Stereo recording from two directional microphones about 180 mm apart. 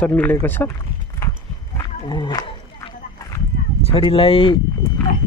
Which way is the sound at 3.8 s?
30° left (ahead or behind).